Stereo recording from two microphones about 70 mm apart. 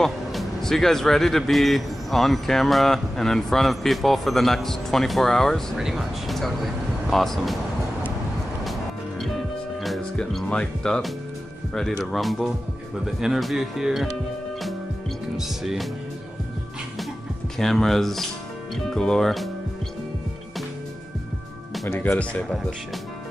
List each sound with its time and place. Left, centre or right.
0.0 s speech: centre
5.8 s speech: centre
10.1 s speech: centre
15.3 s speech: centre
17.6 s speech: centre
21.8 s speech: left
22.2 s speech: centre